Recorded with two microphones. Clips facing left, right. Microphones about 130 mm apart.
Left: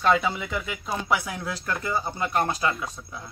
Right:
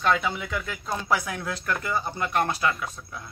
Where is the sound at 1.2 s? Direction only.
25° left (ahead or behind).